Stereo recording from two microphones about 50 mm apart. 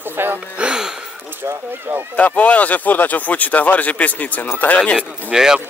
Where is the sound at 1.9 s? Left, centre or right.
Right.